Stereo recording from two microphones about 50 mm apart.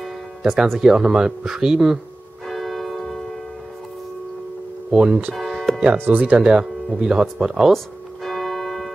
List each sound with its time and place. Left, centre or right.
0.4 s speech: centre
2.4 s church bell: centre
4.9 s speech: centre
5.3 s music: centre
5.9 s speech: right
6.3 s speech: centre
7.7 s church bell: centre